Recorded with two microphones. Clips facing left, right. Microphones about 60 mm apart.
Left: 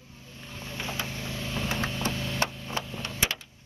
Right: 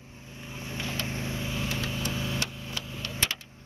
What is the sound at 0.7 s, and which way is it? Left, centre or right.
Vehicle, left.